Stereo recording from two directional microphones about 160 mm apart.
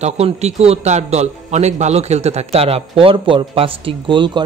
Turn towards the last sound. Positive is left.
turn(degrees=-30)  # may be behind; listen again after turning